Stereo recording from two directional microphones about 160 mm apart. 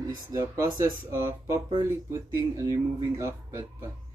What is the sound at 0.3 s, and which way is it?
Speech, 20° right (ahead or behind).